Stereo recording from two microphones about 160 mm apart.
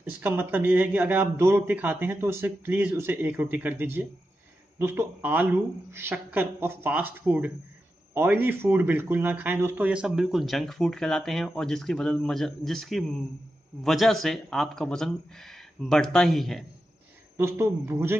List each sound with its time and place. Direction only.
0.0 s a man's voice: 15° right (ahead or behind)
17.4 s speech: 15° right (ahead or behind)